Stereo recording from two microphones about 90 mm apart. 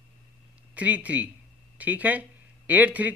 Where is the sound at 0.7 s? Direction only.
15° right (ahead or behind).